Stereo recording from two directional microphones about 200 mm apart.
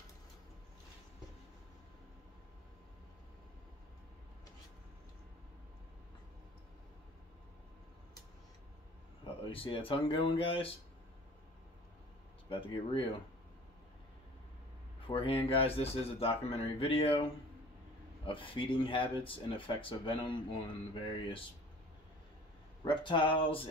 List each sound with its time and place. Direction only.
9.5 s speech: 25° left (ahead or behind)
12.4 s speech: 25° left (ahead or behind)
15.0 s speech: 25° left (ahead or behind)
22.8 s speech: 25° left (ahead or behind)